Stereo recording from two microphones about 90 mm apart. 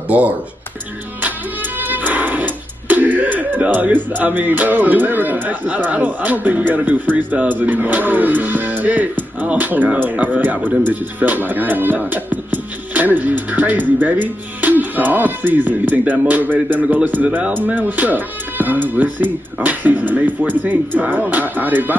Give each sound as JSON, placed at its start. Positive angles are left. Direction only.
{"t": 1.8, "sound": "music", "side_deg": -20}
{"t": 5.9, "sound": "speech", "side_deg": -15}